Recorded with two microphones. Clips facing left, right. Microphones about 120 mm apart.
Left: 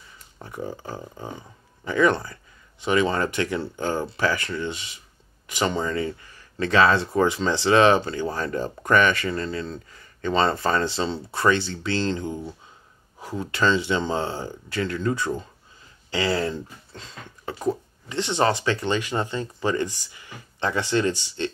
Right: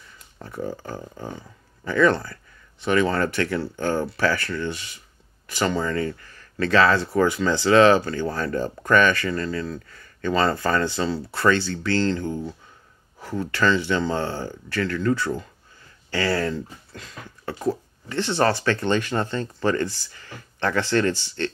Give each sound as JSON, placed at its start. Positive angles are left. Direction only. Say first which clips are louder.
{"t": 0.4, "sound": "speech", "louder": "right 2 dB", "side_deg": 15}